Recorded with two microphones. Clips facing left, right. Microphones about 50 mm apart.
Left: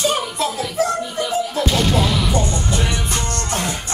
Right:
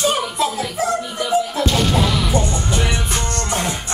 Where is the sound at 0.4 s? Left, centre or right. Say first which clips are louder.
Even; centre.